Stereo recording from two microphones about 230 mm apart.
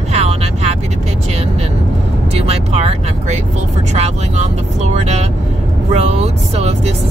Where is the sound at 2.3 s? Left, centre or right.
Right.